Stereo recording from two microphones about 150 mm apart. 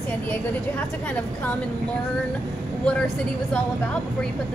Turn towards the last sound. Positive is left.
turn(degrees=5)  # may be behind; listen again after turning